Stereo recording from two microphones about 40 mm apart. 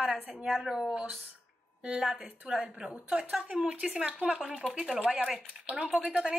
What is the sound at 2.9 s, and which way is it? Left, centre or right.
A woman's voice, right.